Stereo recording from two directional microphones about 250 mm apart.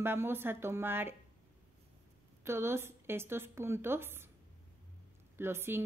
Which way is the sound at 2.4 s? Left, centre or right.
Centre.